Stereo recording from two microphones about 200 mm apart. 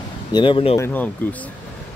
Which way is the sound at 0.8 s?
10° left (ahead or behind).